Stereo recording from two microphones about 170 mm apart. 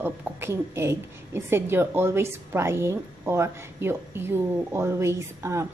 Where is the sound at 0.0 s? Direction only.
15° right (ahead or behind).